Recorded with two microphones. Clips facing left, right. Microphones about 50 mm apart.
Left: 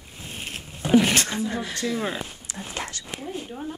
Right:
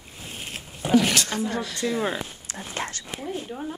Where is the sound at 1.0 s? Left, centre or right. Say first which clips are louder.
Left 1 dB; left.